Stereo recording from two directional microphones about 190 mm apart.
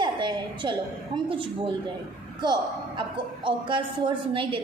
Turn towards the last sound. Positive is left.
turn(degrees=-25)  # may be behind; listen again after turning